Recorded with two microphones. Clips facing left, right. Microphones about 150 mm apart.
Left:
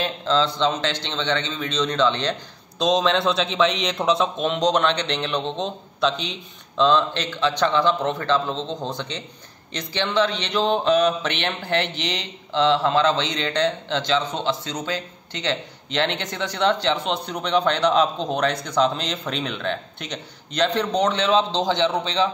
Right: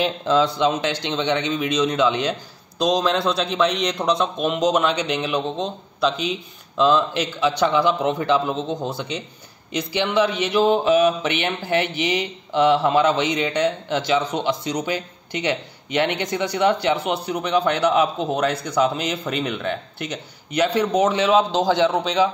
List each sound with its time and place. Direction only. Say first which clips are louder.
0.0 s a man's voice: right 3 dB; 15° right (ahead or behind)